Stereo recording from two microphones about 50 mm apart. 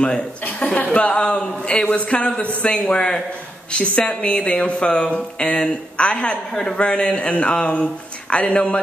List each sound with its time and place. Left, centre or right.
0.4 s speech: left